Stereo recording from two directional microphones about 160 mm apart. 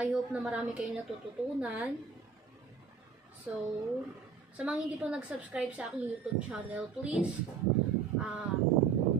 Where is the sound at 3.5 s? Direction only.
10° right (ahead or behind).